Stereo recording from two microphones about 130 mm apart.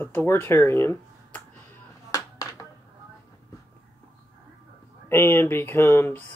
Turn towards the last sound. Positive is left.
turn(degrees=15)  # may be behind; listen again after turning